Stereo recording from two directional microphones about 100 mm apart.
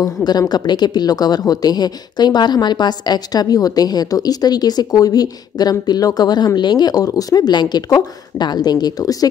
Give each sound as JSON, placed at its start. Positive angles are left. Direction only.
{"t": 0.0, "sound": "speech", "side_deg": 40}